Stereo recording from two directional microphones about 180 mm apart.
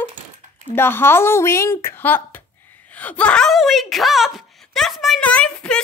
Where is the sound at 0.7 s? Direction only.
10° left (ahead or behind).